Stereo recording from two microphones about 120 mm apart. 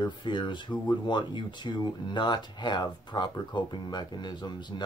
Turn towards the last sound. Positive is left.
turn(degrees=40)  # may be behind; listen again after turning